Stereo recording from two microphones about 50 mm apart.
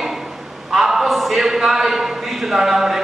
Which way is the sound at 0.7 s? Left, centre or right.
Centre.